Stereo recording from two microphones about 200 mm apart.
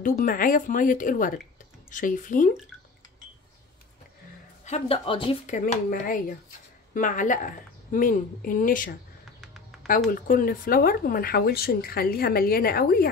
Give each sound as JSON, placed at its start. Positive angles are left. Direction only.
{"t": 0.0, "sound": "a woman's voice", "side_deg": 45}
{"t": 4.6, "sound": "speech", "side_deg": 30}
{"t": 5.9, "sound": "speech", "side_deg": 45}
{"t": 9.4, "sound": "bird", "side_deg": 0}
{"t": 9.8, "sound": "speech", "side_deg": 45}